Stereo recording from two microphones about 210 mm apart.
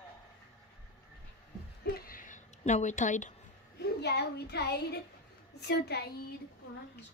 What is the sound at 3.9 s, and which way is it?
A child's voice, 50° left (ahead or behind).